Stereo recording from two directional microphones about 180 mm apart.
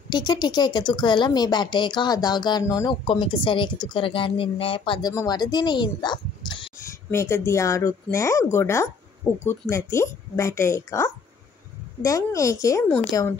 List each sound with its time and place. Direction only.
0.1 s a woman's voice: 25° left (ahead or behind)
7.1 s speech: 15° left (ahead or behind)